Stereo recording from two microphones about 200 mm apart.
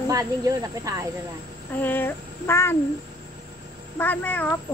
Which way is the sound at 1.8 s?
10° left (ahead or behind).